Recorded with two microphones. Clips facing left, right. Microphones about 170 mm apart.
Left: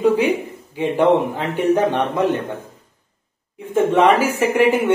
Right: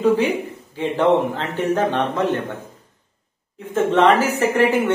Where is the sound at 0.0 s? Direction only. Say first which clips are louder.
Left 1 dB; 10° left (ahead or behind).